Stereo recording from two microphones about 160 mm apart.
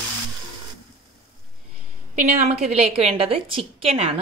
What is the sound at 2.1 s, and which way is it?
Speech, 55° right (ahead or behind).